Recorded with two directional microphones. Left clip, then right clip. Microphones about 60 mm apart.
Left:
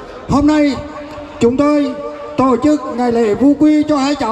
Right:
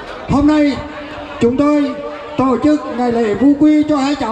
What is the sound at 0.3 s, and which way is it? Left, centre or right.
A man's voice, centre.